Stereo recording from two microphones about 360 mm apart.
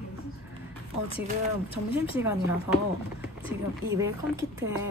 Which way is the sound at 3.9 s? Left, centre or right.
Centre.